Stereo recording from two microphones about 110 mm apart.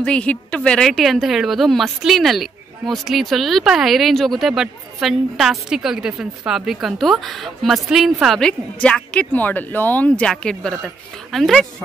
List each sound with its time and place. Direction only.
0.0 s a woman's voice: 10° left (ahead or behind)